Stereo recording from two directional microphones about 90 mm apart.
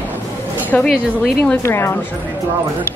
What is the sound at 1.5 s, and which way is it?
Speech, 30° left (ahead or behind).